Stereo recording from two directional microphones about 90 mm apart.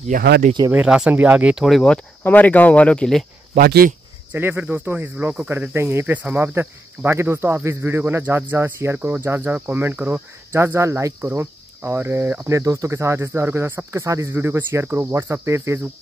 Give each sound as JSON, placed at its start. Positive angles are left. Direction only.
{"t": 0.7, "sound": "speech", "side_deg": -10}
{"t": 1.6, "sound": "speech", "side_deg": 5}
{"t": 2.2, "sound": "speech", "side_deg": 20}
{"t": 4.3, "sound": "speech", "side_deg": -20}
{"t": 14.0, "sound": "cricket", "side_deg": -35}
{"t": 14.3, "sound": "speech", "side_deg": -30}
{"t": 14.9, "sound": "cricket", "side_deg": -25}